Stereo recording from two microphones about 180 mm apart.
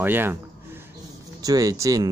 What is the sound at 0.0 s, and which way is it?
Speech, 10° right (ahead or behind).